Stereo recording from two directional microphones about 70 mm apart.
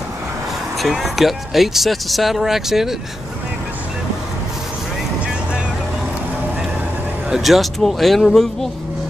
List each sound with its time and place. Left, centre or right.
0.7 s speech: centre
7.2 s speech: centre